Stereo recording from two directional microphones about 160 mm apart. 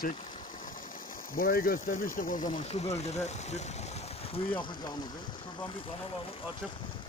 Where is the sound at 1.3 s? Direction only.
60° left (ahead or behind); by 4.9 s 30° left (ahead or behind).